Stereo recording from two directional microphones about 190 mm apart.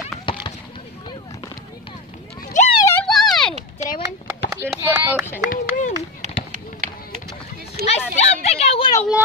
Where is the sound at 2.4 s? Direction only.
50° left (ahead or behind).